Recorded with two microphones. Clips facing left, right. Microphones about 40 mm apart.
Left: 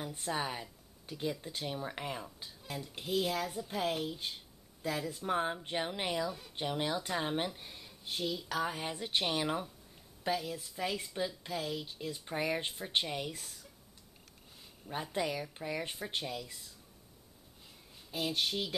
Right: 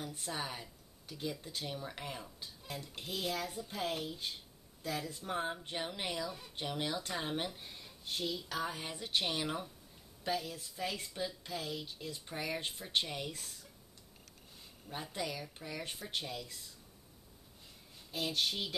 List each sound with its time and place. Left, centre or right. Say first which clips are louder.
0.2 s a woman's voice: left 7 dB; centre
8.6 s a woman's voice: left 4 dB; centre
15.1 s a woman's voice: left 6 dB; centre
18.1 s speech: left 2 dB; centre